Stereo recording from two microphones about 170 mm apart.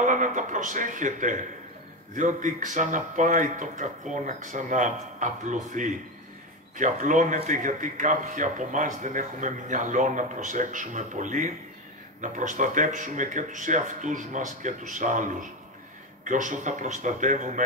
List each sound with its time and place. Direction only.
0.0 s a man's voice: 50° right (ahead or behind)